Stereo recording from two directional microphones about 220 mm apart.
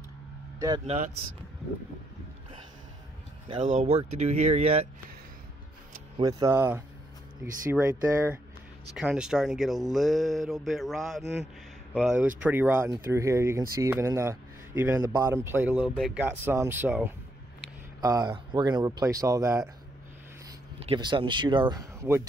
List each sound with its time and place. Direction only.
0.6 s speech: 20° right (ahead or behind)
0.8 s speech: 30° right (ahead or behind)
3.6 s speech: 30° right (ahead or behind)
6.1 s speech: 15° right (ahead or behind)
20.8 s speech: 20° right (ahead or behind)